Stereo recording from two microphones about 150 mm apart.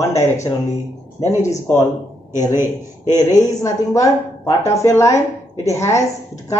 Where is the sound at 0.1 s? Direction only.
20° left (ahead or behind).